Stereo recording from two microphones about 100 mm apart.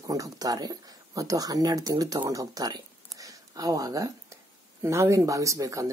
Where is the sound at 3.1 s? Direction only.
35° right (ahead or behind).